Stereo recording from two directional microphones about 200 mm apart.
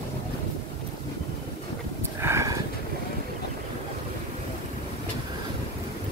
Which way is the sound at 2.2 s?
15° right (ahead or behind).